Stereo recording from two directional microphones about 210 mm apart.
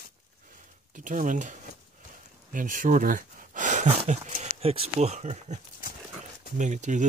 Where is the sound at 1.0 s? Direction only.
40° right (ahead or behind).